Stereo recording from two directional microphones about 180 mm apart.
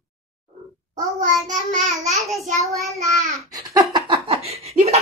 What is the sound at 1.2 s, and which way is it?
Child singing, 45° right (ahead or behind).